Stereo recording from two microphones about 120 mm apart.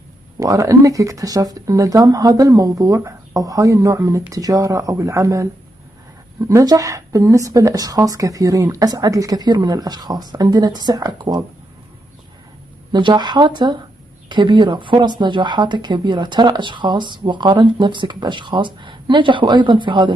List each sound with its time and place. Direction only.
0.4 s speech: 25° right (ahead or behind)
12.9 s speech: 40° right (ahead or behind)